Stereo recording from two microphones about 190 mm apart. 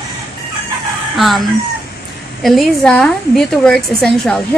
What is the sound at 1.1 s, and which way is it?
Speech, centre (ahead or behind).